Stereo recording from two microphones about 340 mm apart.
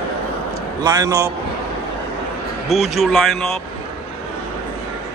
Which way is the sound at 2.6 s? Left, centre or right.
Centre.